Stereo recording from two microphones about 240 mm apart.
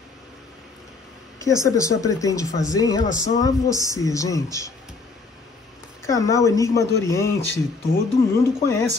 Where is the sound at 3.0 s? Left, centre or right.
Left.